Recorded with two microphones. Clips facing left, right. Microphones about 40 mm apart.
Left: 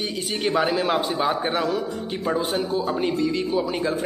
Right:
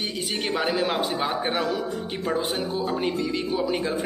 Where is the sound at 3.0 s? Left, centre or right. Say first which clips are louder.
Left 3 dB; centre.